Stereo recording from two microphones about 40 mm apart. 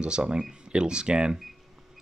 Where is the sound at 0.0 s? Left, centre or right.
Right.